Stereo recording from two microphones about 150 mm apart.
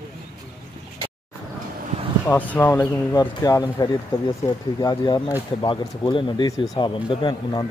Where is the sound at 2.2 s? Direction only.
10° left (ahead or behind).